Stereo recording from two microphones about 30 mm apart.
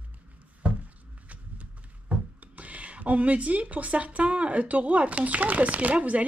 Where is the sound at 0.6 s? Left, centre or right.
Right.